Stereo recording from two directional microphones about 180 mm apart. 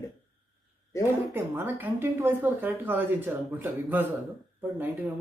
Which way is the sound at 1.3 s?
15° right (ahead or behind).